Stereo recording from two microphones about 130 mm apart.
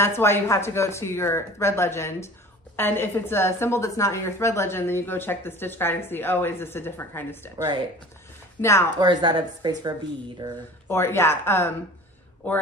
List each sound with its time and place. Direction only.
0.0 s speech: 20° left (ahead or behind)
8.5 s speech: 20° left (ahead or behind)
8.9 s speech: 35° right (ahead or behind)
10.9 s speech: 20° left (ahead or behind)